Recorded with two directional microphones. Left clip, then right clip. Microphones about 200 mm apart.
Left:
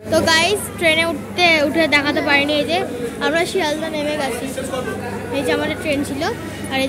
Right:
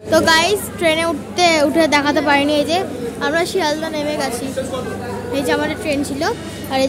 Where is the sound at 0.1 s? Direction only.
10° right (ahead or behind).